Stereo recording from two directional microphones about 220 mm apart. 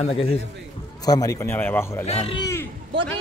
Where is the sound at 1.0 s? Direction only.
15° left (ahead or behind).